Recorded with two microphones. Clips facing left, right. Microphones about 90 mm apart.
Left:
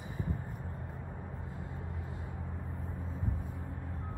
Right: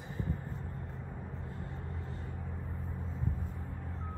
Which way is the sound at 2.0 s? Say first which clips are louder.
Even; 10° left (ahead or behind).